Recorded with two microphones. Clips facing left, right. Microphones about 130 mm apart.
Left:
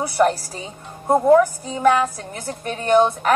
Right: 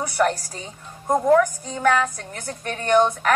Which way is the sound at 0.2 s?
25° left (ahead or behind).